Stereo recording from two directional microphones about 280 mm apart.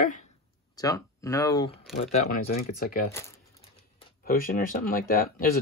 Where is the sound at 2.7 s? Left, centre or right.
Left.